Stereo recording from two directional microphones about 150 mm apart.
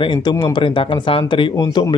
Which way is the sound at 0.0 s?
30° left (ahead or behind).